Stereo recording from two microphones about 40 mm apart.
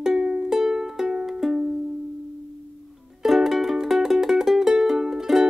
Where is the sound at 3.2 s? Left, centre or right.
Centre.